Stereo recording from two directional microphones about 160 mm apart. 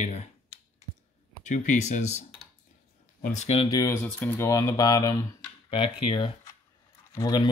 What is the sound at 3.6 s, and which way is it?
Speech, 20° left (ahead or behind).